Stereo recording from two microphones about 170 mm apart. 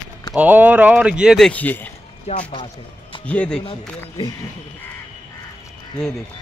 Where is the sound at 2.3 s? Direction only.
40° left (ahead or behind).